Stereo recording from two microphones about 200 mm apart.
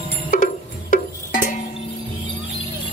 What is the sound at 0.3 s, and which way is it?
Cowbell, 45° left (ahead or behind).